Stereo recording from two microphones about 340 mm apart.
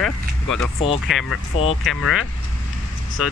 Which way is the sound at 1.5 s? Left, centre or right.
Left.